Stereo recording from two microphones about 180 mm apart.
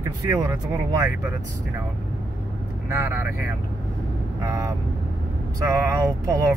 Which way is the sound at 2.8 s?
15° right (ahead or behind).